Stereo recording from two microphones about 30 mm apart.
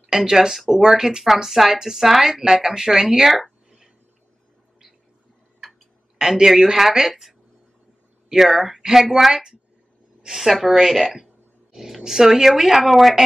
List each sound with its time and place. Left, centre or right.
0.0 s speech: centre
6.1 s speech: right
9.3 s a woman's voice: right; by 13.0 s centre